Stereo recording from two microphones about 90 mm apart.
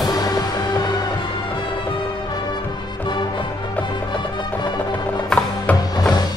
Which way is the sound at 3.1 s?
60° left (ahead or behind).